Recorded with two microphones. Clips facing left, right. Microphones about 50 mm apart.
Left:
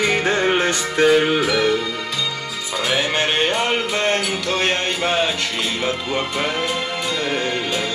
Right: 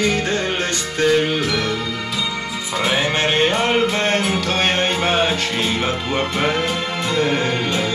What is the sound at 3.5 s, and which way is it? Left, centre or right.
Music, right.